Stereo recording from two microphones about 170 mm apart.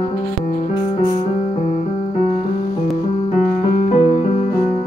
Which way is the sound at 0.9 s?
40° left (ahead or behind).